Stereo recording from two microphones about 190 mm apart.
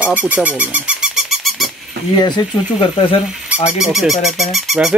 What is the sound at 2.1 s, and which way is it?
Speech, 20° left (ahead or behind).